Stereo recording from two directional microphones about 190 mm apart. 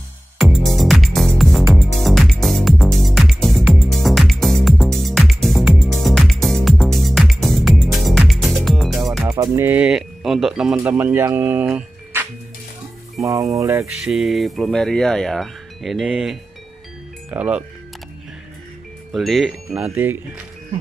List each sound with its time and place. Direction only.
0.4 s music: centre (ahead or behind)
9.3 s speech: 15° right (ahead or behind)
14.0 s speech: centre (ahead or behind)
19.1 s speech: centre (ahead or behind)